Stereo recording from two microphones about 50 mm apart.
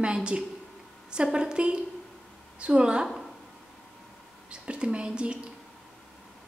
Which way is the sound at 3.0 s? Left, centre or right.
Centre.